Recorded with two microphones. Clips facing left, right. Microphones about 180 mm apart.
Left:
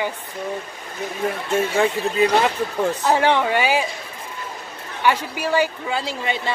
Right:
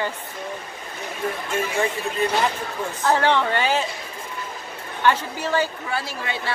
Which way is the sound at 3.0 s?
15° left (ahead or behind).